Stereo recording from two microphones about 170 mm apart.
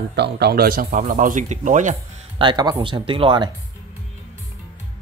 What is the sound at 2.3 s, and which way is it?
Speech, 25° right (ahead or behind).